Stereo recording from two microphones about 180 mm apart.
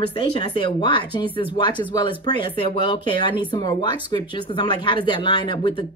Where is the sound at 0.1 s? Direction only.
25° left (ahead or behind).